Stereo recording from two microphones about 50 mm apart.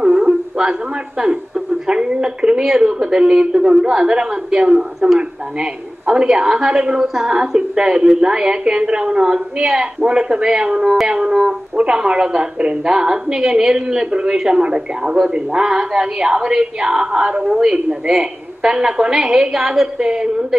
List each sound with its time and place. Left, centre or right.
0.0 s music: centre
1.9 s a woman's voice: centre